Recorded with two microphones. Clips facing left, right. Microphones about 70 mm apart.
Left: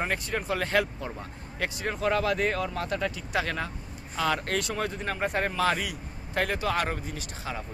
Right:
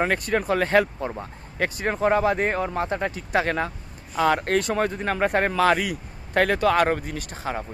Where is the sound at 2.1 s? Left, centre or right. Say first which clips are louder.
Right 3 dB; right.